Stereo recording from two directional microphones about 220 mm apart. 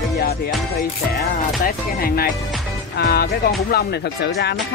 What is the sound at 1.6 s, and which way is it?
Speech, 45° left (ahead or behind).